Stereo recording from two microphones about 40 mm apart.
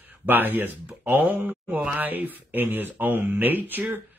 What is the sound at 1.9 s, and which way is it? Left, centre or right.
Speech, right.